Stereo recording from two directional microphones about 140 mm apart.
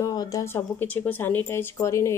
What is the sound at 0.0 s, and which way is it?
Speech, 25° left (ahead or behind).